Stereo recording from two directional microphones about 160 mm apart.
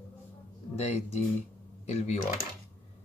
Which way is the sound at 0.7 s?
40° left (ahead or behind).